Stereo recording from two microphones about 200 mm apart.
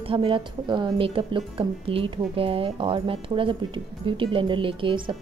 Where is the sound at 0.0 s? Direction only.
25° right (ahead or behind).